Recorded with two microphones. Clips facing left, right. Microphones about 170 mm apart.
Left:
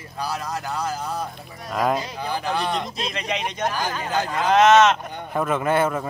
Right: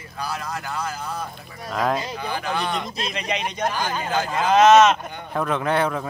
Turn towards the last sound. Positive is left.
turn(degrees=5)  # may be behind; listen again after turning